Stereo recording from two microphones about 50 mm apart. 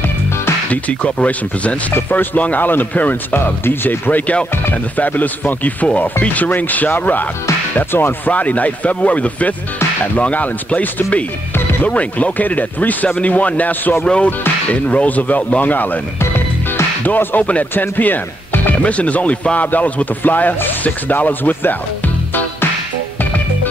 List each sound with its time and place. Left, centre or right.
0.7 s speech: left
3.6 s speech: left
4.9 s speech: left
8.3 s speech: left
14.0 s speech: centre; by 16.0 s left
16.2 s music: left
17.0 s speech: left
17.4 s speech: left
17.7 s speech: left
18.8 s speech: left